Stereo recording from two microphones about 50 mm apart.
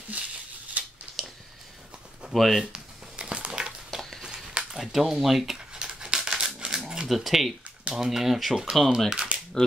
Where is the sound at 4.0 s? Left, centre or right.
Centre.